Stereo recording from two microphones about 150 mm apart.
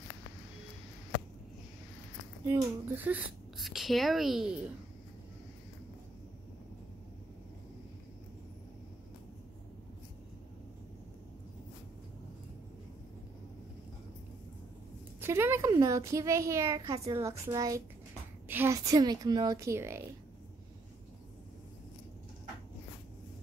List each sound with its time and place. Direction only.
2.4 s a child's voice: 15° right (ahead or behind)
3.5 s a woman's voice: centre (ahead or behind)
15.1 s a child's voice: 15° right (ahead or behind)